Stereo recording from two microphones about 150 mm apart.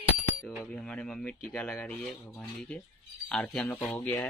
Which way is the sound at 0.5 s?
5° left (ahead or behind).